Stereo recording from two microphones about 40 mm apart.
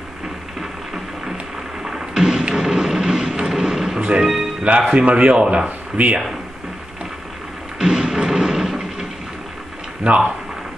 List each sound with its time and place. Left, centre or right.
0.6 s a sound: centre
2.5 s vehicle: centre
3.4 s a sound: centre
4.0 s music: right
4.9 s speech: right
6.0 s speech: right
7.8 s music: centre
10.0 s speech: right